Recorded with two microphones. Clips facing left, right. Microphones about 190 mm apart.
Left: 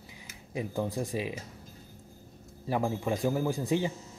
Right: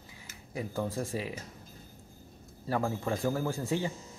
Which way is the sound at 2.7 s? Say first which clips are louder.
Left 2 dB; 15° left (ahead or behind).